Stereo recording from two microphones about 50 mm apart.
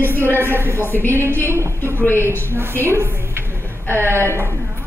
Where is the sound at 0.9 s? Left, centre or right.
Left.